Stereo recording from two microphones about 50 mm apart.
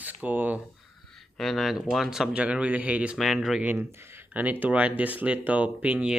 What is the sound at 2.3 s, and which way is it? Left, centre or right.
Speech, right.